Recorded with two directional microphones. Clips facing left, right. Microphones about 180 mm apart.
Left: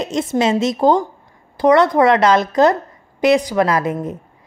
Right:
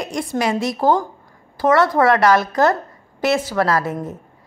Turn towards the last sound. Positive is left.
turn(degrees=20)  # may be behind; listen again after turning